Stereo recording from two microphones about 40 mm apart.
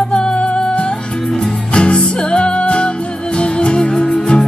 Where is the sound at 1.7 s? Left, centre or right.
Left.